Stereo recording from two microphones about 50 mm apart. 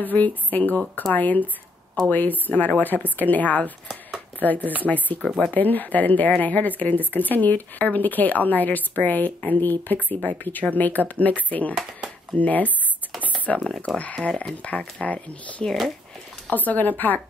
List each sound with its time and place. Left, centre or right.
0.0 s speech: left
13.7 s speech: centre
15.6 s speech: centre
16.4 s speech: left